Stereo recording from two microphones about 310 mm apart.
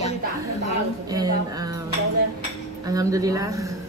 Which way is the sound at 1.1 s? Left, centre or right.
Centre.